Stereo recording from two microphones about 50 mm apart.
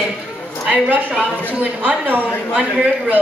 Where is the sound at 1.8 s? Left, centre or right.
Right.